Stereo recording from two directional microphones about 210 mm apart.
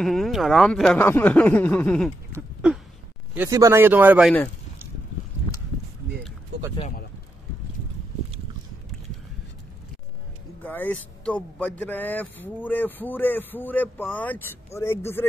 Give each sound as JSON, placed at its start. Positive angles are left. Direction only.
{"t": 0.0, "sound": "speech", "side_deg": 0}
{"t": 2.3, "sound": "a sound", "side_deg": -5}
{"t": 3.3, "sound": "speech", "side_deg": -15}
{"t": 10.6, "sound": "speech", "side_deg": 10}